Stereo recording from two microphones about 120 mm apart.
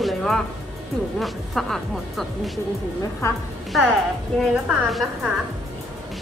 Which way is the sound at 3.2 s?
25° left (ahead or behind).